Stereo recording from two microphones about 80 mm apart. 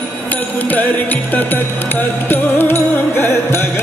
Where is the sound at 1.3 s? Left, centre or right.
Left.